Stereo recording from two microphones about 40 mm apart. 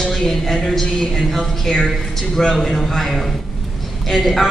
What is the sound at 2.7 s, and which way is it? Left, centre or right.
A woman's voice, centre.